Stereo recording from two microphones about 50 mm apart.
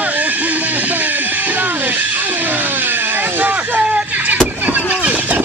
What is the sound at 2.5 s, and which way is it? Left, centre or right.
Vehicle, right.